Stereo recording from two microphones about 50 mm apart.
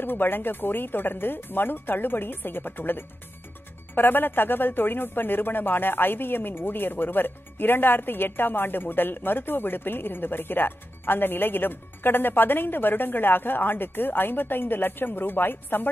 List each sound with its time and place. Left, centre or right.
0.0 s speech: left